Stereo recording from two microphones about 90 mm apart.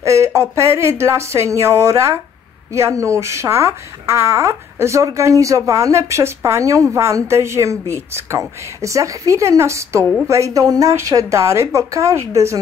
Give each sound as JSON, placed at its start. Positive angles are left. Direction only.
{"t": 0.0, "sound": "speech", "side_deg": -35}